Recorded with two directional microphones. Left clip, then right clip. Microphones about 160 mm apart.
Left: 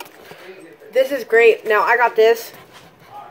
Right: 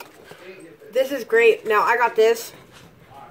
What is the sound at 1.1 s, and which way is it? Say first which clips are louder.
A woman's voice: left 3 dB; 50° right (ahead or behind).